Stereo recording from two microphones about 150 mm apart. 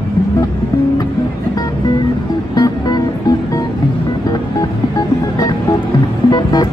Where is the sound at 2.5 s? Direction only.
25° left (ahead or behind).